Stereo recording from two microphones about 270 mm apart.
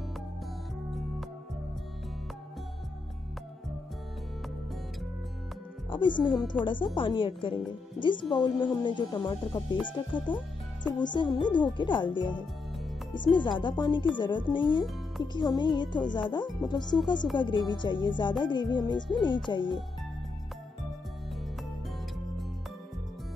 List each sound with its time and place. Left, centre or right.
5.9 s a woman's voice: centre